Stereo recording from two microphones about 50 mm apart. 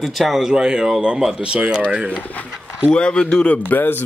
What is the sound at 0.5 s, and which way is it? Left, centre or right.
Speech, centre.